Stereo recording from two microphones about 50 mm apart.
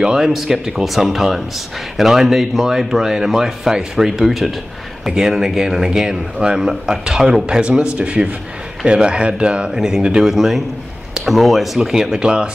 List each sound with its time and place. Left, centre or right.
0.0 s speech: centre
9.7 s speech: centre